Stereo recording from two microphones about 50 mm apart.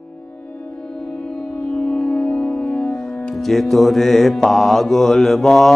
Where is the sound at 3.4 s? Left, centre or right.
Centre.